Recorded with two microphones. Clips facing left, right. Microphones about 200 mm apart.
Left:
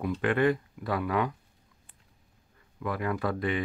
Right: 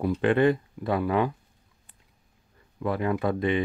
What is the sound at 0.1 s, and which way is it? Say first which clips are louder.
Speech: right 3 dB; 25° right (ahead or behind).